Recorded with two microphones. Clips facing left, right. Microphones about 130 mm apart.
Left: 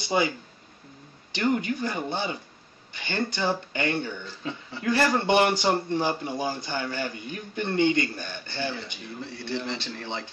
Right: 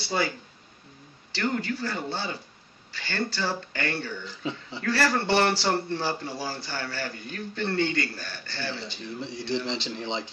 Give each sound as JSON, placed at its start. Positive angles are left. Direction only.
{"t": 0.0, "sound": "speech", "side_deg": 20}
{"t": 1.3, "sound": "speech", "side_deg": 20}
{"t": 4.4, "sound": "speech", "side_deg": -20}
{"t": 4.8, "sound": "speech", "side_deg": 20}
{"t": 9.8, "sound": "speech", "side_deg": -20}